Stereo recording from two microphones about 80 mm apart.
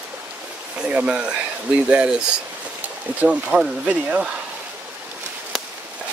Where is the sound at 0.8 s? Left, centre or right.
Centre.